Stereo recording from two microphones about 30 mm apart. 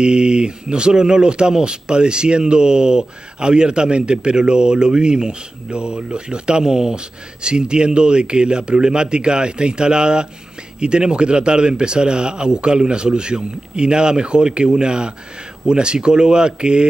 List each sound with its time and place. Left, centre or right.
0.0 s speech: right